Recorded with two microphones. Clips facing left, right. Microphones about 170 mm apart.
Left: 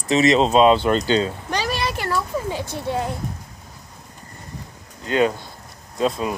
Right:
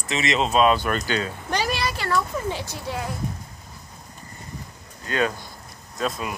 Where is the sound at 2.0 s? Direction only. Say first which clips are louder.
Left 1 dB; 15° left (ahead or behind).